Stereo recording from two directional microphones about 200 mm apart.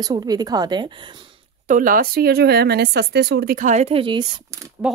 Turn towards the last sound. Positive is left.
turn(degrees=-5)  # may be behind; listen again after turning